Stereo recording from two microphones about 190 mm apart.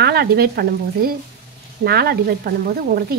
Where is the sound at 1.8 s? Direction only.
55° right (ahead or behind).